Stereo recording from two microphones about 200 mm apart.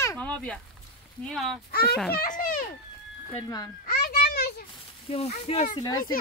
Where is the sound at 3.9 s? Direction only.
50° left (ahead or behind).